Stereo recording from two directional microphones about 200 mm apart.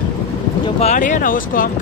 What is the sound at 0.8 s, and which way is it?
Speech, 35° left (ahead or behind).